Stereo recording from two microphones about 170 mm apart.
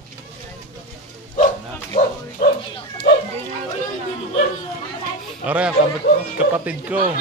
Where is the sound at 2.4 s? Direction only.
55° left (ahead or behind).